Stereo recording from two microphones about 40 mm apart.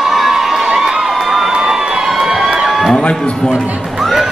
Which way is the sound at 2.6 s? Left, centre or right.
Centre.